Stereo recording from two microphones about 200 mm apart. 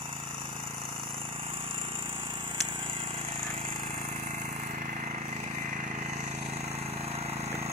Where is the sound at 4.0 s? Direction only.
40° right (ahead or behind).